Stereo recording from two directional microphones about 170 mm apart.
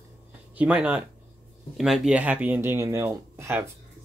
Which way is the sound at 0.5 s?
10° right (ahead or behind).